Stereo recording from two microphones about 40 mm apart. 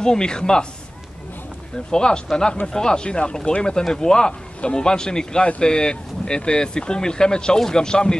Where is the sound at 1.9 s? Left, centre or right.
Centre.